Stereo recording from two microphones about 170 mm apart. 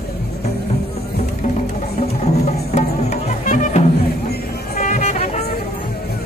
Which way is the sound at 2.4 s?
45° left (ahead or behind).